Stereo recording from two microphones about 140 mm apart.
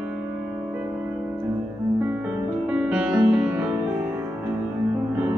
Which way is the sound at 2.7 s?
5° right (ahead or behind).